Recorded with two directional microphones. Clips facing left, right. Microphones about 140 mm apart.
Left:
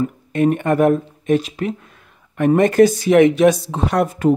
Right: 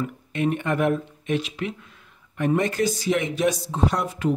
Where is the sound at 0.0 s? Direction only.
45° left (ahead or behind); by 4.1 s 70° left (ahead or behind).